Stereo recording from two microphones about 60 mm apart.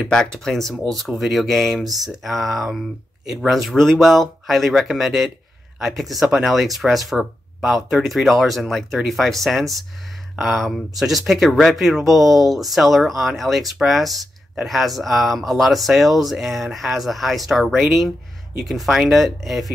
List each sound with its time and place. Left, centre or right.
0.1 s speech: centre